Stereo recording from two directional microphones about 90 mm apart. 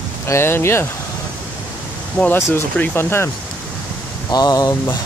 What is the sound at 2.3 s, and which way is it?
Speech, 30° left (ahead or behind).